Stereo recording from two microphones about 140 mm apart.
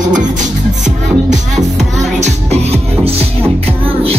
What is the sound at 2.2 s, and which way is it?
Music, 50° right (ahead or behind).